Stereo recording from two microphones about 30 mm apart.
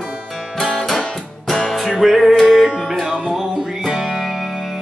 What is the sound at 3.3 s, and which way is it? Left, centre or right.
Music, centre.